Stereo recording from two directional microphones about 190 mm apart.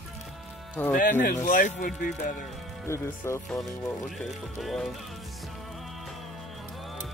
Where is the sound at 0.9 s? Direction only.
45° left (ahead or behind).